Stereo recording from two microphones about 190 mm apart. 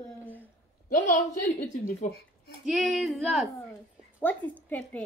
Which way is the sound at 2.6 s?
Centre (ahead or behind).